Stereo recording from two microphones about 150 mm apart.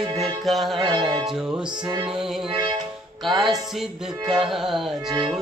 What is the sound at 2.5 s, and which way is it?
Music, 35° right (ahead or behind).